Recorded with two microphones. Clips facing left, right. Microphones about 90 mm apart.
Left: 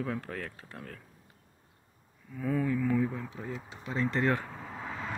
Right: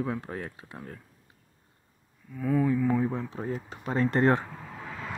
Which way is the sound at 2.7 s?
15° right (ahead or behind).